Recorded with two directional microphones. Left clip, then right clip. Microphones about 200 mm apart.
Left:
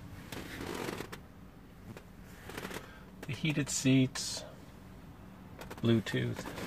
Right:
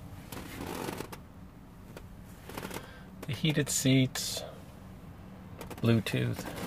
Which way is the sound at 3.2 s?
25° right (ahead or behind).